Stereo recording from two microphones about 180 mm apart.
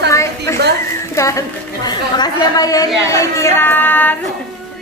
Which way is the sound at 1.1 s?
15° left (ahead or behind).